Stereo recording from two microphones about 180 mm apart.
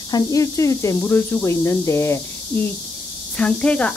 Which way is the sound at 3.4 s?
5° left (ahead or behind).